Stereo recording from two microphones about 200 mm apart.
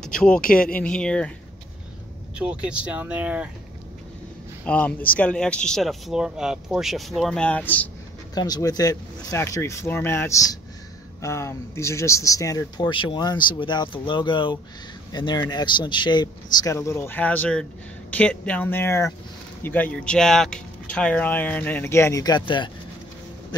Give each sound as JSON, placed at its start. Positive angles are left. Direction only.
{"t": 0.0, "sound": "speech", "side_deg": 5}
{"t": 2.3, "sound": "speech", "side_deg": -5}
{"t": 4.6, "sound": "speech", "side_deg": 5}
{"t": 8.4, "sound": "speech", "side_deg": 20}